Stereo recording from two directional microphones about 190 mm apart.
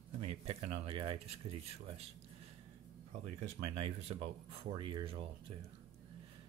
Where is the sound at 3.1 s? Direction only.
35° right (ahead or behind).